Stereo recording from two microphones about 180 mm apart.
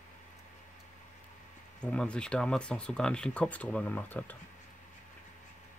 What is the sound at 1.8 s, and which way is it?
Speech, 5° left (ahead or behind).